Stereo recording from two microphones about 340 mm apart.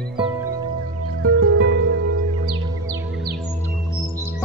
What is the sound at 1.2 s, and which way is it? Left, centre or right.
Music, right.